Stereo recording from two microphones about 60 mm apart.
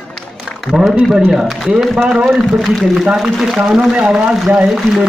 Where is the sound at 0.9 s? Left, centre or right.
Centre.